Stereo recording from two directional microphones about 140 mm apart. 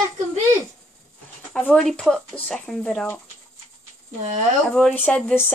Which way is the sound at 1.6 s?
5° left (ahead or behind).